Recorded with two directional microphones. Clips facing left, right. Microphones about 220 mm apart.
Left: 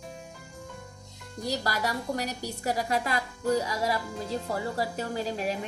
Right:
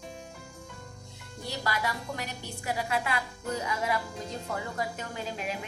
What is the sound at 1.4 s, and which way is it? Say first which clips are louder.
A woman's voice: left 3 dB; 40° left (ahead or behind).